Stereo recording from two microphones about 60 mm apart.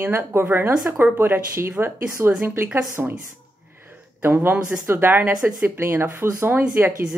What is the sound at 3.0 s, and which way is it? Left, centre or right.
Speech, right.